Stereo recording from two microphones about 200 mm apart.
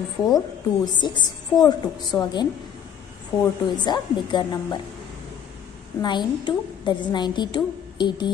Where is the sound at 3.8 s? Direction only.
20° left (ahead or behind).